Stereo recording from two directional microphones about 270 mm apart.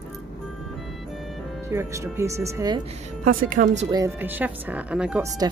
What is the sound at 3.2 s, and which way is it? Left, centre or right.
Speech, right.